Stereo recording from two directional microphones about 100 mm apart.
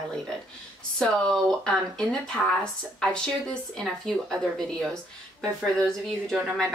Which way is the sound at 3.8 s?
5° left (ahead or behind).